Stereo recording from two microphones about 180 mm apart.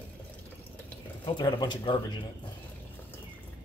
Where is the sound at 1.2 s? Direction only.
25° left (ahead or behind).